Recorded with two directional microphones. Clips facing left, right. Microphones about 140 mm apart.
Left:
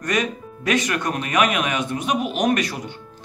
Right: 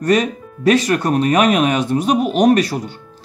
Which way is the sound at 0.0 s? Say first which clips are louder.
Right 8 dB; 35° right (ahead or behind).